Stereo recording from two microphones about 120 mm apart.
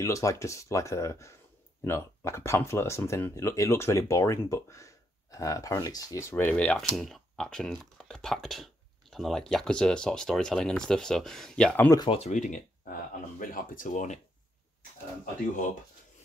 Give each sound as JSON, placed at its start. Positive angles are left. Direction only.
{"t": 0.0, "sound": "speech", "side_deg": 25}
{"t": 6.3, "sound": "speech", "side_deg": 15}
{"t": 12.1, "sound": "speech", "side_deg": 70}